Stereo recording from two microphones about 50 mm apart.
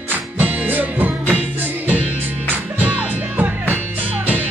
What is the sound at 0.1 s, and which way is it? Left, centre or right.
Music, right.